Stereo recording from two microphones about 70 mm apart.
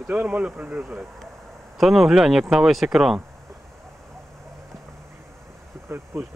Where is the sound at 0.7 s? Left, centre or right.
Centre.